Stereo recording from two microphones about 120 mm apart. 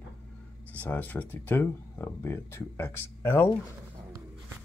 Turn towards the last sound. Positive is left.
turn(degrees=20)  # may be behind; listen again after turning